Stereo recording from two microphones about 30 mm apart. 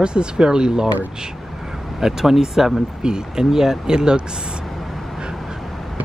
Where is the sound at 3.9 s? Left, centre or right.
Right.